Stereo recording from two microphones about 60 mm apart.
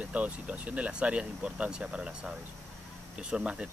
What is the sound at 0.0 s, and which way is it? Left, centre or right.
Speech, right.